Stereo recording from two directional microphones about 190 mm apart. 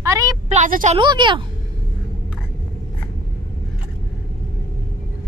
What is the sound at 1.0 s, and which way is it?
Speech, 25° right (ahead or behind).